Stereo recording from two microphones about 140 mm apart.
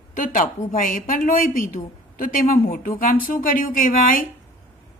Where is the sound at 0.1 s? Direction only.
70° left (ahead or behind).